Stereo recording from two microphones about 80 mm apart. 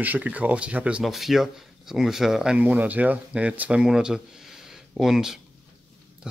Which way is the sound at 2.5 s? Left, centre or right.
Right.